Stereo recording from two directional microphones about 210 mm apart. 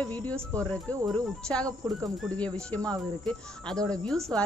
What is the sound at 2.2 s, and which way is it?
A woman's voice, 5° left (ahead or behind).